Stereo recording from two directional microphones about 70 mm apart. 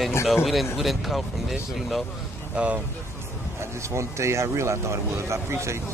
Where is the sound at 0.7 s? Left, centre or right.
Centre.